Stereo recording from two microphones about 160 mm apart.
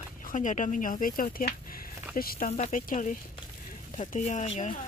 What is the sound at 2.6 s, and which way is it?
Speech, 50° left (ahead or behind).